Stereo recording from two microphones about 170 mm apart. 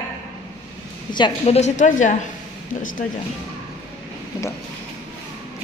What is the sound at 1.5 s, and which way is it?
Speech, 45° left (ahead or behind).